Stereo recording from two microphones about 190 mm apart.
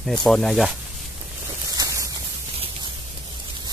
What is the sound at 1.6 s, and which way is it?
Rain, 20° right (ahead or behind).